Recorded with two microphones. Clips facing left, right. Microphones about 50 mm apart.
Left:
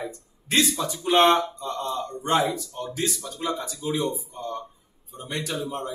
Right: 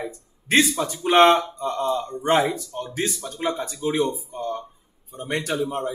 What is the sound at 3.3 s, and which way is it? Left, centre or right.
Speech, right.